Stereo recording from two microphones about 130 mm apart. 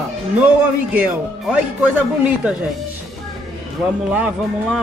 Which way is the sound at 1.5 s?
10° right (ahead or behind).